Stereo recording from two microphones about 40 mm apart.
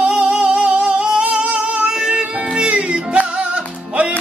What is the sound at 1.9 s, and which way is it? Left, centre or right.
Music, right.